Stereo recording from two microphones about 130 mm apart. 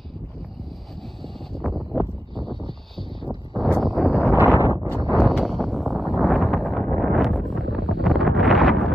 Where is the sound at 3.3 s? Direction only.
15° left (ahead or behind).